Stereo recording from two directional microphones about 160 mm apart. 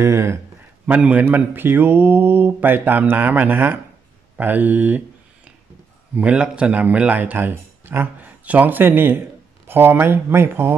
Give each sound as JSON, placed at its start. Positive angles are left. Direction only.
{"t": 0.0, "sound": "a man's voice", "side_deg": -15}
{"t": 6.1, "sound": "a man's voice", "side_deg": -5}